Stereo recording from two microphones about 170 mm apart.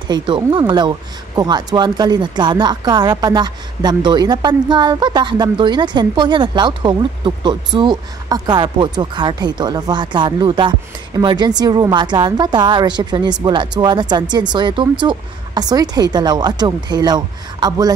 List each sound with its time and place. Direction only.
0.1 s speech: 25° right (ahead or behind)